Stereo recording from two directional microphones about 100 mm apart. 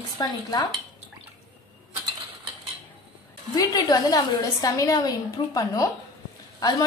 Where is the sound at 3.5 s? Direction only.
35° left (ahead or behind).